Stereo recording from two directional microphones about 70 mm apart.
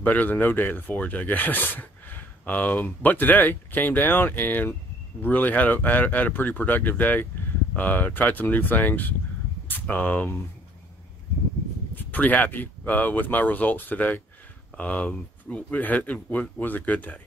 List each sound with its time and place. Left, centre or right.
0.0 s speech: left
11.9 s speech: left